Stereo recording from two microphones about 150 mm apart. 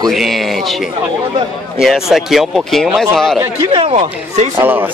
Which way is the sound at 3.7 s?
40° right (ahead or behind).